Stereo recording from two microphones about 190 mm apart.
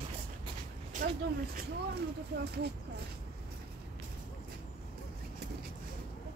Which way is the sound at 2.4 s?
55° right (ahead or behind).